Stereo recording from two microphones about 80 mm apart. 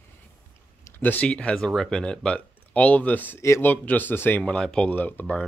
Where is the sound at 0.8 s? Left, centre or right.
Left.